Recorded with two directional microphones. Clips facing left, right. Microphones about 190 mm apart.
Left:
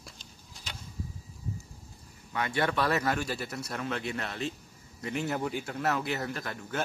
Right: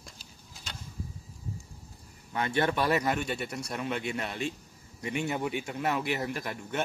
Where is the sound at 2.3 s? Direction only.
25° right (ahead or behind).